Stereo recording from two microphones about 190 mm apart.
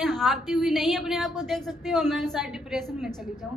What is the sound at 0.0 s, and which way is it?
A woman's voice, centre (ahead or behind).